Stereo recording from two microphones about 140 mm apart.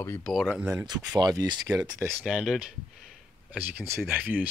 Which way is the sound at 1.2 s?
30° right (ahead or behind).